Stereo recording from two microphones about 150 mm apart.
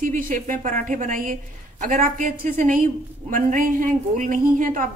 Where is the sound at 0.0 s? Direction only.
60° right (ahead or behind).